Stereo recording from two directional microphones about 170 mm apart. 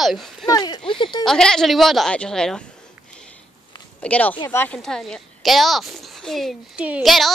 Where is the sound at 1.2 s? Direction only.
5° left (ahead or behind).